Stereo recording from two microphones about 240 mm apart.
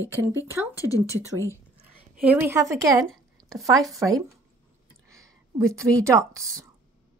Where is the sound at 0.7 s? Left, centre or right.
Centre.